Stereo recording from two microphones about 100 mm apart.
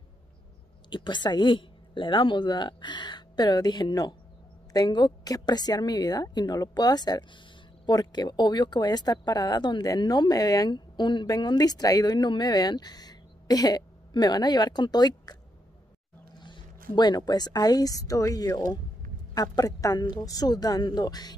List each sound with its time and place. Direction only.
0.8 s speech: 50° left (ahead or behind)
16.3 s a woman's voice: 50° left (ahead or behind)